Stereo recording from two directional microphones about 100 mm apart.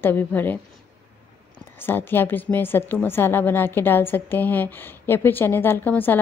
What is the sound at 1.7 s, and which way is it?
A woman's voice, 20° left (ahead or behind).